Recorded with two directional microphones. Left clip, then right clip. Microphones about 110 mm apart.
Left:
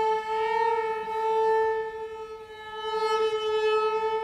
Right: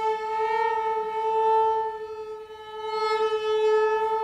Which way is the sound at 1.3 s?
25° left (ahead or behind).